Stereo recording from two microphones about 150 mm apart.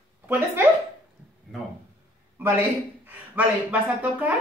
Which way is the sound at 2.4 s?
15° right (ahead or behind).